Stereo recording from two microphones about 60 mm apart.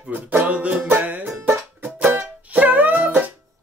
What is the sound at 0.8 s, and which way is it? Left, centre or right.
Music, right.